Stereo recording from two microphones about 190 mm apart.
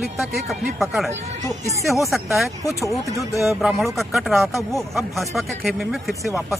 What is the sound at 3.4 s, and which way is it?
Speech, centre (ahead or behind).